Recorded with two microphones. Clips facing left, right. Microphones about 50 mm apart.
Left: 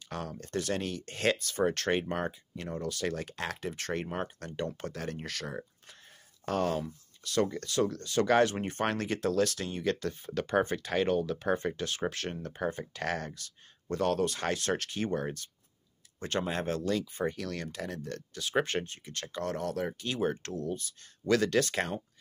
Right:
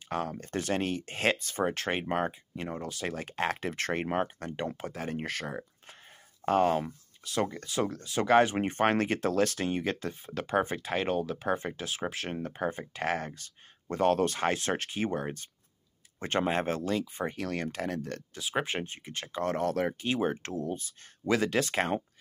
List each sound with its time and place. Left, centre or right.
0.1 s speech: right
1.7 s speech: centre
3.3 s speech: right
4.2 s speech: right
5.1 s speech: right
7.2 s speech: centre
8.5 s speech: right
9.8 s speech: centre
14.1 s speech: right
18.4 s speech: centre
19.4 s speech: right
19.9 s speech: right